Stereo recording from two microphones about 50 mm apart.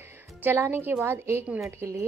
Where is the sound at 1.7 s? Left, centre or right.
Right.